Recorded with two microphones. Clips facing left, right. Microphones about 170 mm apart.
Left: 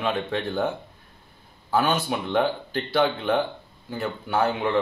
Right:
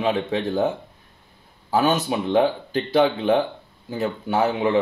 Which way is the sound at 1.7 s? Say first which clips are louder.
Right 3 dB; 20° right (ahead or behind).